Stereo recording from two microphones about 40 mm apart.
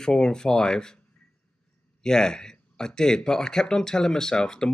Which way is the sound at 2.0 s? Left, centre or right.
Centre.